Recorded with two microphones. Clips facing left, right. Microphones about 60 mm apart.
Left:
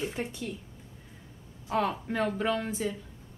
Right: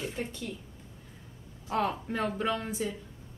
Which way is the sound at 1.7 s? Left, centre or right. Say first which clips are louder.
Left 1 dB; centre.